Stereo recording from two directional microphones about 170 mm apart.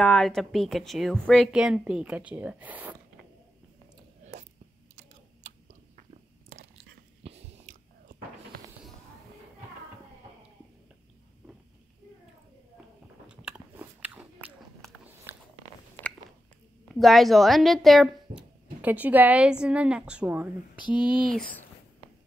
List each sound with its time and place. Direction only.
0.0 s speech: 5° left (ahead or behind); by 3.0 s 10° right (ahead or behind)
7.2 s biting: 35° right (ahead or behind)
13.3 s biting: 10° right (ahead or behind)
14.8 s biting: 5° left (ahead or behind)
16.9 s speech: centre (ahead or behind)